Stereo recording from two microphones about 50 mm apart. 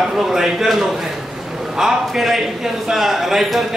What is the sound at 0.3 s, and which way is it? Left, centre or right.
A man's voice, centre.